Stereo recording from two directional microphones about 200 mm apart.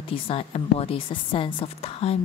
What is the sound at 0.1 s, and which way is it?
A woman's voice, 30° left (ahead or behind).